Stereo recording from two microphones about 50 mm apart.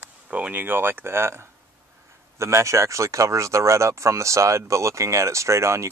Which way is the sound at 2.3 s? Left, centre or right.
Right.